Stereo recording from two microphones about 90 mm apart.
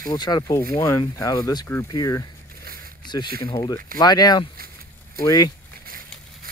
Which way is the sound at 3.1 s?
55° left (ahead or behind).